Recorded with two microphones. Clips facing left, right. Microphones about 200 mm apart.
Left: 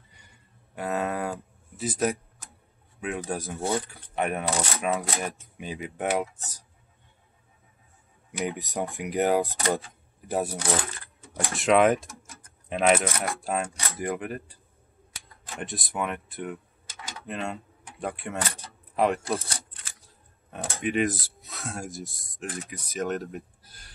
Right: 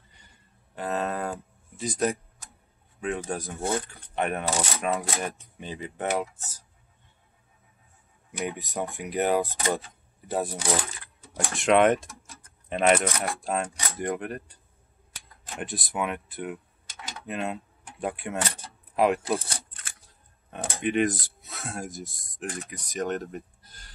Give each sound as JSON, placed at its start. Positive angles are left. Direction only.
{"t": 0.7, "sound": "speech", "side_deg": 10}
{"t": 8.3, "sound": "speech", "side_deg": 15}
{"t": 15.6, "sound": "speech", "side_deg": 0}
{"t": 18.6, "sound": "power windows", "side_deg": 0}
{"t": 20.5, "sound": "speech", "side_deg": 0}